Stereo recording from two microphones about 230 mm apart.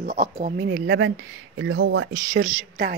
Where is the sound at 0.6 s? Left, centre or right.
Right.